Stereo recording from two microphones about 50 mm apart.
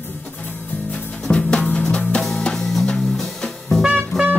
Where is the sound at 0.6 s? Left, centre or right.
Left.